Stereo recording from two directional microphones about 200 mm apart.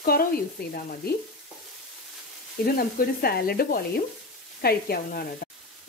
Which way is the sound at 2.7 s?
50° left (ahead or behind).